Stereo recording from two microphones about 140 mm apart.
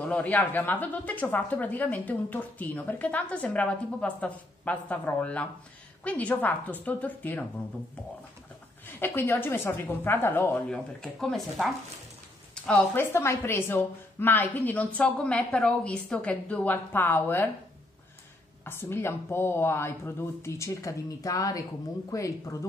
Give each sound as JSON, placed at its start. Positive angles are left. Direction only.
{"t": 0.0, "sound": "speech", "side_deg": 10}
{"t": 9.0, "sound": "speech", "side_deg": 15}
{"t": 18.6, "sound": "speech", "side_deg": 15}